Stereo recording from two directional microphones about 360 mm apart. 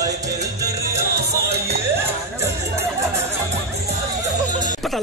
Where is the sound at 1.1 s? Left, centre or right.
Right.